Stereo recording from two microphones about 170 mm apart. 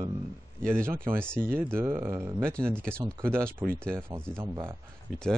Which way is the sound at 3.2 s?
15° right (ahead or behind).